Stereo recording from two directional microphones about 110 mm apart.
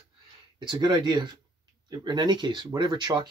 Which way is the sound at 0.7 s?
45° right (ahead or behind).